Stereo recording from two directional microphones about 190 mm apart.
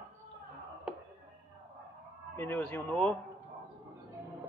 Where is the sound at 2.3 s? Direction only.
10° left (ahead or behind).